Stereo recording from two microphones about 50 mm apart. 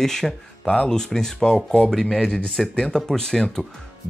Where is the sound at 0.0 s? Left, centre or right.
Centre.